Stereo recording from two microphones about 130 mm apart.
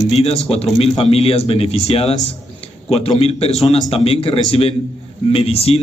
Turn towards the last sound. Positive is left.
turn(degrees=50)  # may be behind; listen again after turning